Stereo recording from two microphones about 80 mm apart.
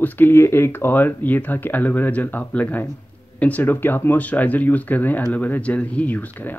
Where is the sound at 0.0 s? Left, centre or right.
Left.